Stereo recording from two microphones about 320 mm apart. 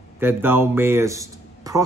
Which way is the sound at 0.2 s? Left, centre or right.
Centre.